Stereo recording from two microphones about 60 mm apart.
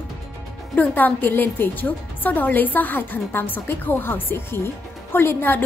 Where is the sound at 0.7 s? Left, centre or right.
Left.